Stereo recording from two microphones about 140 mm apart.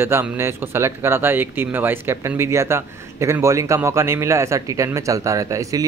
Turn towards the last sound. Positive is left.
turn(degrees=-25)  # may be behind; listen again after turning